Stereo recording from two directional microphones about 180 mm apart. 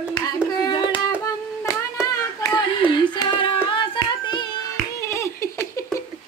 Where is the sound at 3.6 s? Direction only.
25° left (ahead or behind).